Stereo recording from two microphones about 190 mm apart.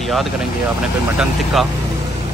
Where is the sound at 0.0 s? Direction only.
Centre (ahead or behind).